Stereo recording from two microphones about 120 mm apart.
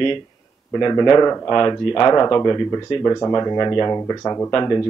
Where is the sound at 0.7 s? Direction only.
35° left (ahead or behind).